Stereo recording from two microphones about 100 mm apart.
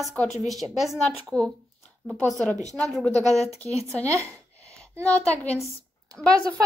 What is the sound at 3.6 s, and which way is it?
A woman's voice, 15° left (ahead or behind).